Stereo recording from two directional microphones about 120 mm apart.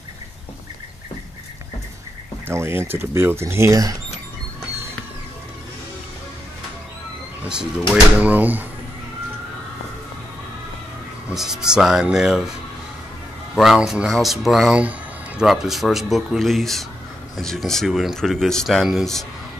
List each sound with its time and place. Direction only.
2.4 s speech: 20° right (ahead or behind)
7.9 s speech: 10° right (ahead or behind)
11.2 s speech: 5° right (ahead or behind)
13.6 s speech: 5° right (ahead or behind)